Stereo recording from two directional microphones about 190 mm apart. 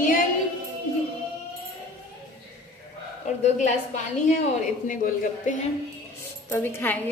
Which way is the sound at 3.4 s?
40° left (ahead or behind).